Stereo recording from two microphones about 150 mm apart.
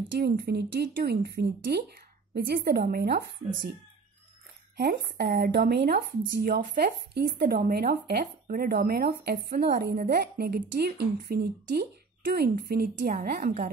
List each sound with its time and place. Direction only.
0.2 s speech: 90° right
4.7 s a woman's voice: 90° right; by 13.7 s 70° right (ahead or behind)